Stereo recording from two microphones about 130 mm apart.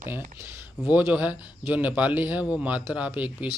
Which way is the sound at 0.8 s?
10° right (ahead or behind).